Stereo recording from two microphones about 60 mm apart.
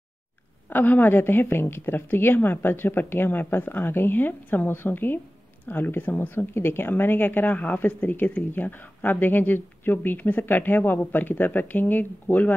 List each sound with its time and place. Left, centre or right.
0.7 s speech: left